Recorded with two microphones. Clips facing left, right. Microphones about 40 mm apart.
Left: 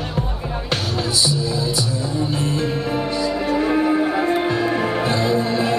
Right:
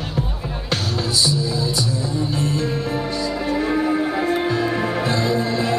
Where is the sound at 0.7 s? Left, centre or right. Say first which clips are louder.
Even; centre.